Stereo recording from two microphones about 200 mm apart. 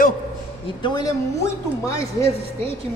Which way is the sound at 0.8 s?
20° left (ahead or behind).